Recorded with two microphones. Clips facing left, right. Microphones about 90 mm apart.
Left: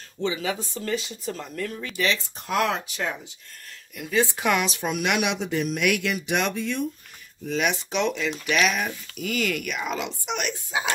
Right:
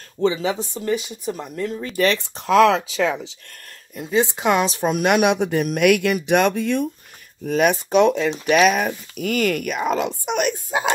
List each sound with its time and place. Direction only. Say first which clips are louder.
0.2 s speech: right 7 dB; 30° right (ahead or behind)
1.8 s speech: right 7 dB; 40° right (ahead or behind)
2.1 s speech: right 10 dB; 90° right
3.9 s speech: right 4 dB; 25° right (ahead or behind)
4.6 s speech: right 7 dB; 40° right (ahead or behind)